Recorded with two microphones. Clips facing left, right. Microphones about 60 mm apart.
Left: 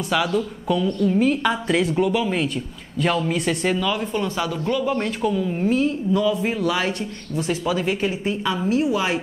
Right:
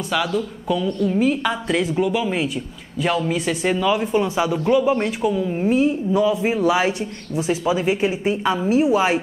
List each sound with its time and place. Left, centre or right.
0.1 s a woman's voice: centre
3.7 s speech: centre